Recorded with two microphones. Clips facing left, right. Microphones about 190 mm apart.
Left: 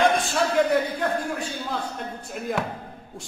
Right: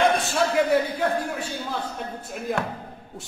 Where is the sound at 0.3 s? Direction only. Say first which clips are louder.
Even; 5° right (ahead or behind).